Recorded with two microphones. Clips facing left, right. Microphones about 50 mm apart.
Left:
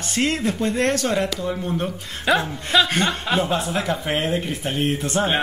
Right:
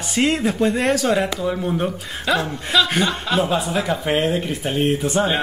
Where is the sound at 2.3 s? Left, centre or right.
Centre.